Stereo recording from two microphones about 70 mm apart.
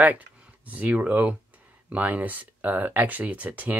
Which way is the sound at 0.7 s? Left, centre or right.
Right.